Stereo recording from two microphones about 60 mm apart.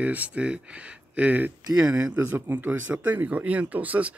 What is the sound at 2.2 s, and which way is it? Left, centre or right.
Speech, right.